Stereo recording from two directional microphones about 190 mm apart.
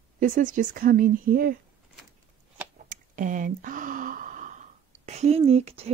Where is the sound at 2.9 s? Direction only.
45° right (ahead or behind).